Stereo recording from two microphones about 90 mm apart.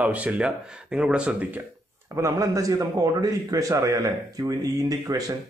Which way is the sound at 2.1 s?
40° right (ahead or behind).